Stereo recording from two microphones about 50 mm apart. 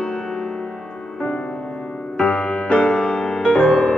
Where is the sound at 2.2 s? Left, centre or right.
Left.